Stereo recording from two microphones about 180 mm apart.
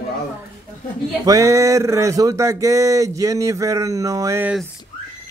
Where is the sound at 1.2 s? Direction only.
15° right (ahead or behind).